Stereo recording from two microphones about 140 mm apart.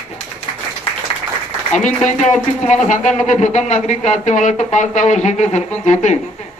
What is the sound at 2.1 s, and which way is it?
Speech, 60° left (ahead or behind).